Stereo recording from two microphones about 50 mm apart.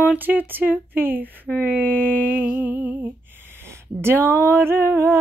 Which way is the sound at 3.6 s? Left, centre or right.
Right.